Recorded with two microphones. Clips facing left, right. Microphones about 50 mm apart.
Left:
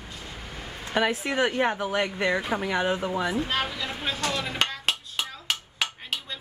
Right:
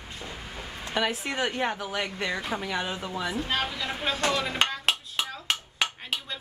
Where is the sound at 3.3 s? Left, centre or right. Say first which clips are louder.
Left 2 dB; centre.